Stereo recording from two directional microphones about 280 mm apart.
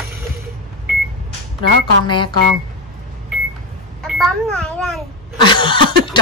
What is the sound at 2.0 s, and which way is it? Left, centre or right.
Speech, centre.